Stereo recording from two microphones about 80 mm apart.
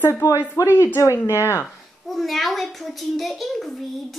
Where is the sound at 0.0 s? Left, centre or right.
Left.